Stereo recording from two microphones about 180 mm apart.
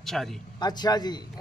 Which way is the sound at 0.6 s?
20° left (ahead or behind).